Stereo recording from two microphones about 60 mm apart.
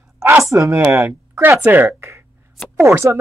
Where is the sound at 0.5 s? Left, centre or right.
Right.